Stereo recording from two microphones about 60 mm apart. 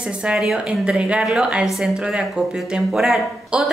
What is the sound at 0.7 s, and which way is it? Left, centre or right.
Speech, centre.